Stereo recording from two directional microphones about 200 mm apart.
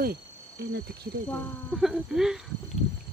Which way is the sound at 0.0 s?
50° right (ahead or behind).